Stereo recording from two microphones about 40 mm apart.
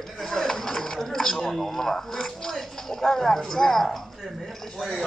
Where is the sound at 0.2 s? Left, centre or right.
Centre.